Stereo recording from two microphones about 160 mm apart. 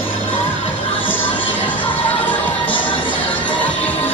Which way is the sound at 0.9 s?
10° left (ahead or behind).